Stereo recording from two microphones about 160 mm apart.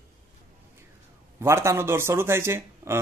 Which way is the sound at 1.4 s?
15° right (ahead or behind).